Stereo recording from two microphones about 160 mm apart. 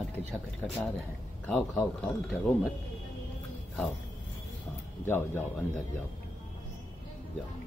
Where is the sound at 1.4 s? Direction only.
15° left (ahead or behind).